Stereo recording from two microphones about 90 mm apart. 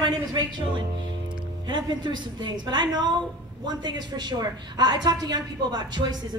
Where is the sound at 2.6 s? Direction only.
55° right (ahead or behind).